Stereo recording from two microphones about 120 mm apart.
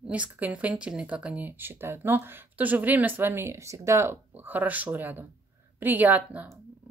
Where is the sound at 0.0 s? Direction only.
10° right (ahead or behind).